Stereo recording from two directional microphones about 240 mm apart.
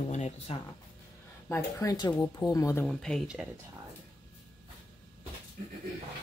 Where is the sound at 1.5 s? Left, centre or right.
Centre.